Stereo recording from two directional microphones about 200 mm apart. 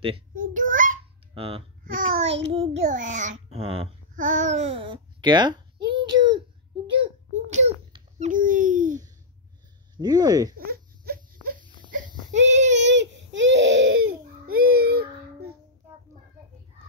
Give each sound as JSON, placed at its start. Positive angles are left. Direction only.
{"t": 0.3, "sound": "a sound", "side_deg": -40}
{"t": 1.3, "sound": "a child's voice", "side_deg": -30}
{"t": 4.1, "sound": "babbling", "side_deg": -40}
{"t": 7.4, "sound": "a sound", "side_deg": -35}
{"t": 9.9, "sound": "a sound", "side_deg": -20}
{"t": 10.6, "sound": "baby cry", "side_deg": -50}
{"t": 12.4, "sound": "child singing", "side_deg": -35}
{"t": 12.7, "sound": "baby cry", "side_deg": -65}
{"t": 14.5, "sound": "child singing", "side_deg": -50}